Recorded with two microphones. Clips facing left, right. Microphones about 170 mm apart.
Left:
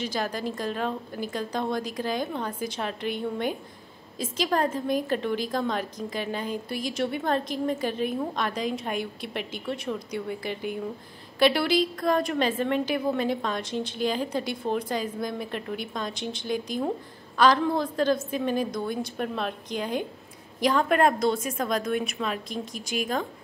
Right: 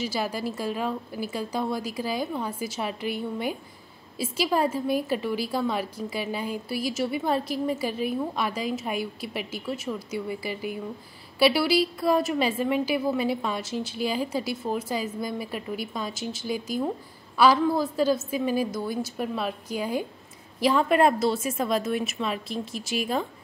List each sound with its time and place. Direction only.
0.0 s a woman's voice: 5° right (ahead or behind)